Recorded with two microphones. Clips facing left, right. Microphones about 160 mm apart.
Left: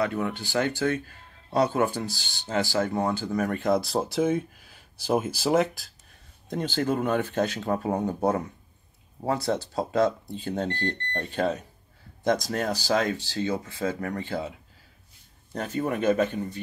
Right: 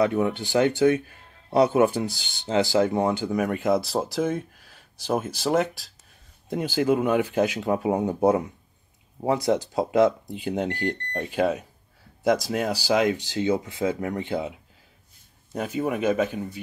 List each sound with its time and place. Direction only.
0.0 s speech: 20° right (ahead or behind); by 5.9 s centre (ahead or behind)
6.5 s speech: 10° right (ahead or behind)
15.5 s speech: 10° right (ahead or behind)